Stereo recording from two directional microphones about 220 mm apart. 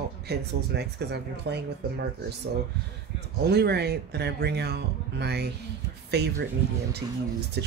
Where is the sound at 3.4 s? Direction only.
45° right (ahead or behind).